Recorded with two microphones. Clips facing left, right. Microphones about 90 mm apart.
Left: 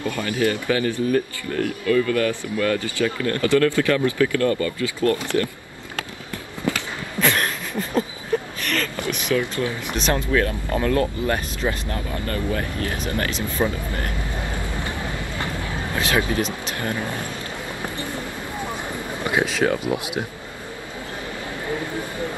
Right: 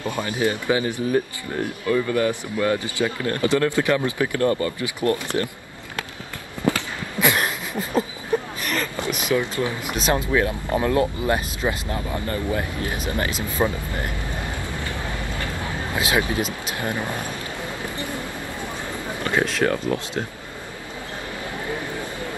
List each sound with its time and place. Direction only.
0.0 s speech: 20° right (ahead or behind)
7.2 s a sound: 10° right (ahead or behind)
8.6 s speech: 20° right (ahead or behind)
15.9 s speech: 15° right (ahead or behind)
18.9 s a sound: 15° left (ahead or behind)
19.4 s speech: 5° left (ahead or behind)